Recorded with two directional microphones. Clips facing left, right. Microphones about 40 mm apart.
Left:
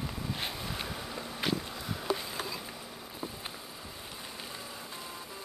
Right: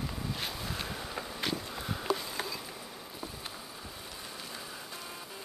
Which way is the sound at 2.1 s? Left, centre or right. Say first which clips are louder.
Even; centre.